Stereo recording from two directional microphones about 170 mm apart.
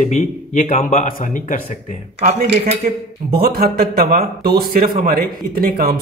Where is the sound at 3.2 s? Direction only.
65° right (ahead or behind).